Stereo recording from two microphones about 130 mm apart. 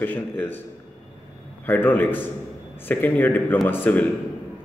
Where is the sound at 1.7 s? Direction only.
15° left (ahead or behind).